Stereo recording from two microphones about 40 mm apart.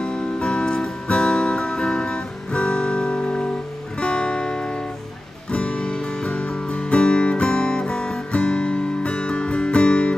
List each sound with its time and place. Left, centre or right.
0.0 s music: left
5.5 s guitar: left